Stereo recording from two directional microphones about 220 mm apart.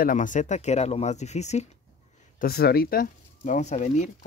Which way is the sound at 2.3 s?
45° left (ahead or behind).